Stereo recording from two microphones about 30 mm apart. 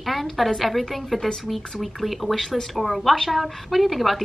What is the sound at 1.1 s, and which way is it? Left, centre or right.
Speech, centre.